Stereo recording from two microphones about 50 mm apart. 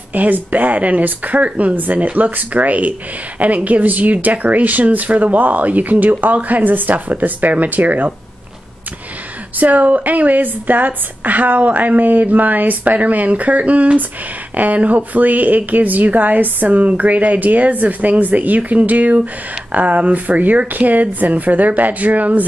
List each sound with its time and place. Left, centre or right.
0.1 s speech: right
9.6 s speech: right